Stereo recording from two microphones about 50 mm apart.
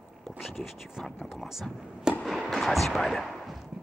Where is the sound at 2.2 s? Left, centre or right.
Centre.